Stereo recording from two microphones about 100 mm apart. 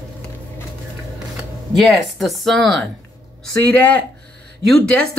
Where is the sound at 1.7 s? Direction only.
Centre (ahead or behind).